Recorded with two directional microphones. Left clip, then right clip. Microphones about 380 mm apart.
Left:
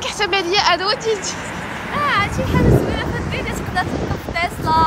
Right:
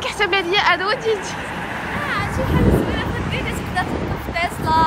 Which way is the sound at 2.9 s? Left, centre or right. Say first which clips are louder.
Left 1 dB; centre.